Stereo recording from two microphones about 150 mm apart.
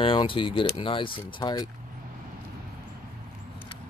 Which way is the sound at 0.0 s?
35° left (ahead or behind).